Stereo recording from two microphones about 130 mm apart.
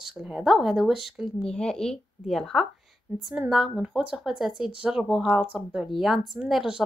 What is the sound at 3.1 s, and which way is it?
Speech, 15° right (ahead or behind).